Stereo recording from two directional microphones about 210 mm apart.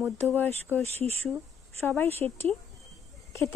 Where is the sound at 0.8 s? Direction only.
30° right (ahead or behind).